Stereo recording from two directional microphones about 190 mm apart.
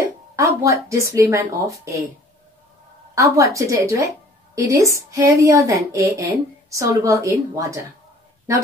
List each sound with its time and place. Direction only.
0.0 s speech: 15° right (ahead or behind)
3.2 s a woman's voice: 15° right (ahead or behind)